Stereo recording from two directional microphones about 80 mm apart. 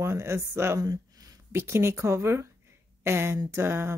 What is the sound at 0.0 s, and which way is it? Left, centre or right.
Speech, right.